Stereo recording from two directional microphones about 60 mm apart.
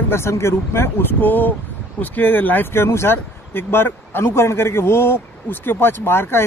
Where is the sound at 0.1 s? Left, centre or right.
Left.